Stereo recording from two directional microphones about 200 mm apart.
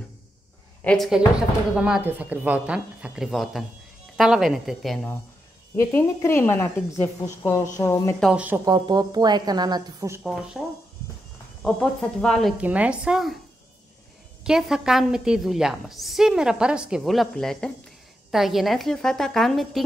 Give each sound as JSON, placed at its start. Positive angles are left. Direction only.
{"t": 0.8, "sound": "a woman's voice", "side_deg": 0}
{"t": 5.8, "sound": "a woman's voice", "side_deg": 10}
{"t": 8.2, "sound": "a woman's voice", "side_deg": -5}
{"t": 8.6, "sound": "a woman's voice", "side_deg": -20}
{"t": 11.6, "sound": "a woman's voice", "side_deg": 0}
{"t": 14.4, "sound": "a woman's voice", "side_deg": -5}